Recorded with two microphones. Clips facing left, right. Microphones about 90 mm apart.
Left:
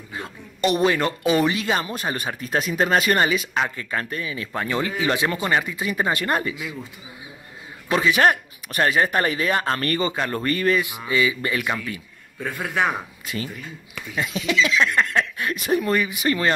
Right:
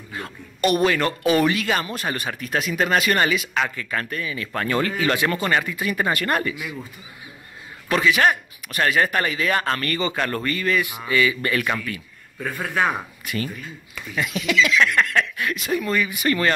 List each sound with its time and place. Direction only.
0.1 s speech: 20° left (ahead or behind)
4.5 s speech: 10° left (ahead or behind)
7.9 s speech: 30° left (ahead or behind)
9.8 s speech: 35° left (ahead or behind)
10.1 s speech: 20° left (ahead or behind)
10.4 s speech: 35° left (ahead or behind)
11.1 s speech: 20° left (ahead or behind)
14.1 s speech: 30° left (ahead or behind)
16.1 s speech: 20° left (ahead or behind)